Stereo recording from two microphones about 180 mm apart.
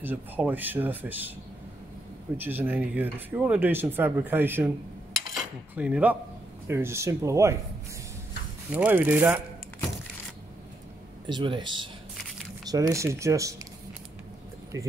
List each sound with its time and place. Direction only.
0.0 s speech: 10° right (ahead or behind)
2.3 s speech: 10° right (ahead or behind)
5.8 s speech: 5° right (ahead or behind)
8.7 s speech: 10° right (ahead or behind)
11.2 s speech: 25° right (ahead or behind)